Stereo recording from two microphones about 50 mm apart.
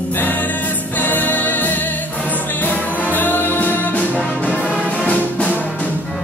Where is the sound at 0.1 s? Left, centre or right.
Left.